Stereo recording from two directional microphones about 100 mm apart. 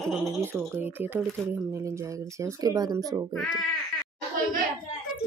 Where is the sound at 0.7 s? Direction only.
20° right (ahead or behind); by 3.3 s 40° right (ahead or behind).